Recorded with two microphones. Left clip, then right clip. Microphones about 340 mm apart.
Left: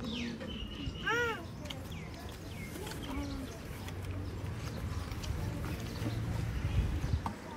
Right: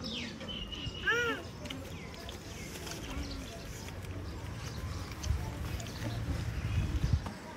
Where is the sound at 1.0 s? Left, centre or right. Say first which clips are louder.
Right 2 dB; centre.